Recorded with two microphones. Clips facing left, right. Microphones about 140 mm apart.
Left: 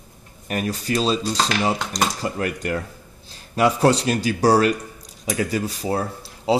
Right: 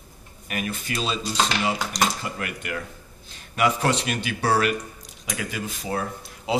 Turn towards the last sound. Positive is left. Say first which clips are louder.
# left 6 dB
turn(degrees=30)  # may be behind; listen again after turning